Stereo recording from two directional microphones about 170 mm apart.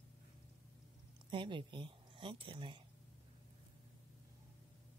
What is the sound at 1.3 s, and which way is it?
Speech, 30° right (ahead or behind).